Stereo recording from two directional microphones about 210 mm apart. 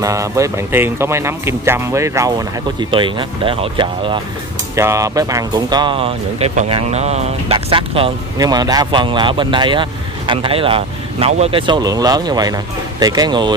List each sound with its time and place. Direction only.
0.0 s speech: 15° right (ahead or behind)